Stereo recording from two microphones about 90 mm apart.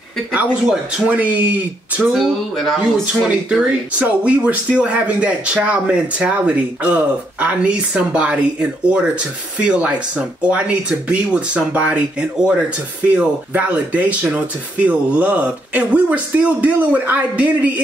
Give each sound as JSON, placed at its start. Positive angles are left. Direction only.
{"t": 0.3, "sound": "speech", "side_deg": -15}
{"t": 2.1, "sound": "speech", "side_deg": 5}
{"t": 2.8, "sound": "speech", "side_deg": -10}